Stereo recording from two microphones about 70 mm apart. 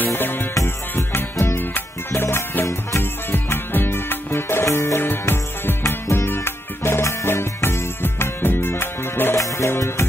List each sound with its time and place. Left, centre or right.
0.0 s music: left
3.0 s music: left
9.4 s music: left